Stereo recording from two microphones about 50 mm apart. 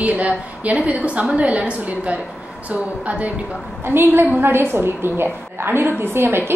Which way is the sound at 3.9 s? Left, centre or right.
Right.